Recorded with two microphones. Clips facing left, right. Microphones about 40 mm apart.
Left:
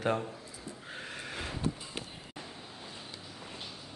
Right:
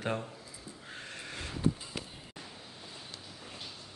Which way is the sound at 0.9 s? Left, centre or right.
Centre.